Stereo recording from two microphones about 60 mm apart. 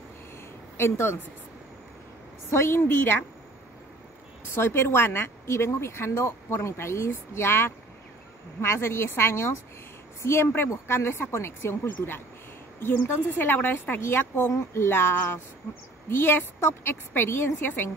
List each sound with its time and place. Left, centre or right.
0.7 s speech: left
2.5 s speech: left
4.6 s speech: left